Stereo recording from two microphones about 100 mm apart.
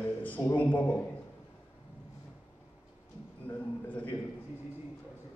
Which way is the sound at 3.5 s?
20° left (ahead or behind).